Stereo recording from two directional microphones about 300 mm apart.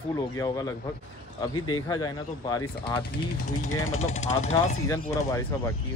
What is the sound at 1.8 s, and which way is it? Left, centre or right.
Speech, centre.